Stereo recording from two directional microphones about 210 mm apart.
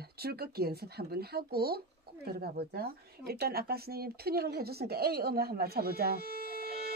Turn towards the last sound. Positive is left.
turn(degrees=-45)  # may be behind; listen again after turning